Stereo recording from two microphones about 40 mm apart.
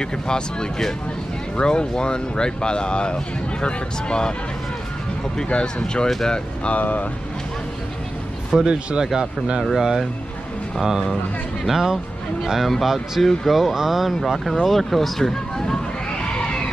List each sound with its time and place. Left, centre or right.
0.0 s speech: centre
5.4 s speech: left
6.7 s speech: left
8.6 s speech: right
9.0 s speech: centre
12.4 s speech: centre
16.2 s a sound: left